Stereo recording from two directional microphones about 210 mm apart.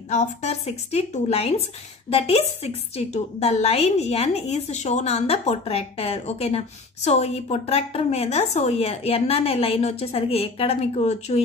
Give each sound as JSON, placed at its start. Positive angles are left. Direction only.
{"t": 0.1, "sound": "a woman's voice", "side_deg": 35}